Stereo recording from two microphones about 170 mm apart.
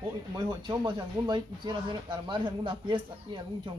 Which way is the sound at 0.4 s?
25° right (ahead or behind).